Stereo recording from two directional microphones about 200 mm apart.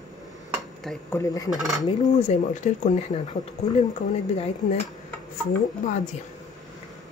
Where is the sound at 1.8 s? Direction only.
25° left (ahead or behind).